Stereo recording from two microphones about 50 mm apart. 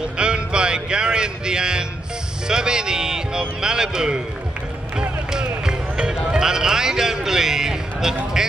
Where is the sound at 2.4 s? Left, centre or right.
Centre.